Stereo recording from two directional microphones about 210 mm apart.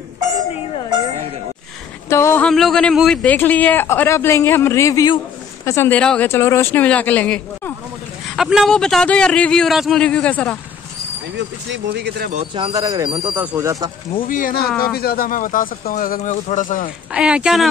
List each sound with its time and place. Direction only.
2.0 s speech: 15° left (ahead or behind)
11.3 s speech: 55° right (ahead or behind)
12.3 s speech: 30° right (ahead or behind)
14.2 s speech: 40° left (ahead or behind)
17.1 s speech: 5° right (ahead or behind)